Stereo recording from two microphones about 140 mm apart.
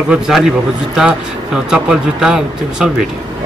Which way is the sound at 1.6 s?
5° right (ahead or behind).